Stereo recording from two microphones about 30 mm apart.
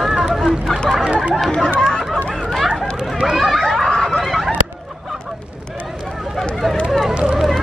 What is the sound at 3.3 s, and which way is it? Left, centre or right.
Chatter, centre.